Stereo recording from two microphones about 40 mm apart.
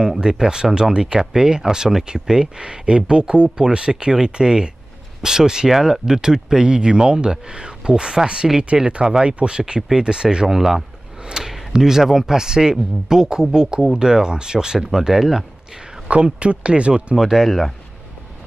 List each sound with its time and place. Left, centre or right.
0.2 s speech: centre
11.2 s a sound: centre
11.5 s speech: centre
16.3 s speech: right
17.2 s speech: centre
17.5 s speech: centre